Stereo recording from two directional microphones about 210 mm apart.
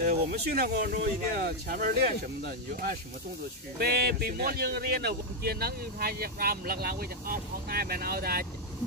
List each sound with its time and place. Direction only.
0.0 s speech: 45° right (ahead or behind)